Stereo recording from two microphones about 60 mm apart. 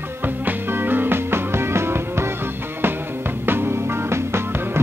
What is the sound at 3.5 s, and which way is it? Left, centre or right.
Music, right.